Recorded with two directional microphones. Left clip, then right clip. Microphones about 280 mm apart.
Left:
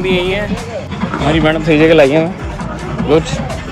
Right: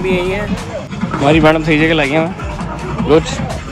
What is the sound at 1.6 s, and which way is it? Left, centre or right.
Speech, centre.